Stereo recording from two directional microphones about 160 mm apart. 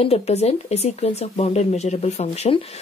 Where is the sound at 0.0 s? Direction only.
40° left (ahead or behind).